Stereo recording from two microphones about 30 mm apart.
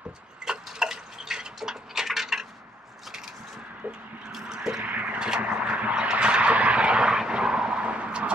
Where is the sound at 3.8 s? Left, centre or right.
Right.